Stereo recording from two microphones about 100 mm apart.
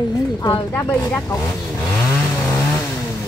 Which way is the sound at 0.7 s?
20° left (ahead or behind).